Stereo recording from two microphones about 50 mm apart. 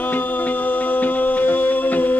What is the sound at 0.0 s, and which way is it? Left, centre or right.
Music, left.